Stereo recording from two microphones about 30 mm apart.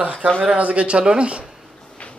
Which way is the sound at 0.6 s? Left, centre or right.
Right.